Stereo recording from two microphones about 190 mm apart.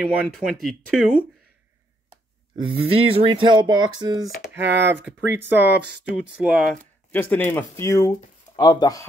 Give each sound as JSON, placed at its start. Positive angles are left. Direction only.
{"t": 0.0, "sound": "speech", "side_deg": 0}
{"t": 2.5, "sound": "speech", "side_deg": -30}
{"t": 4.6, "sound": "speech", "side_deg": -65}
{"t": 5.3, "sound": "speech", "side_deg": -10}